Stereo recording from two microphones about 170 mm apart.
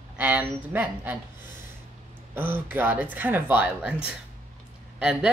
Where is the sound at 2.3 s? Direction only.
15° right (ahead or behind).